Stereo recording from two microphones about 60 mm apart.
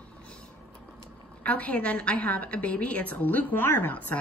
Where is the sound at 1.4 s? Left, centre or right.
Left.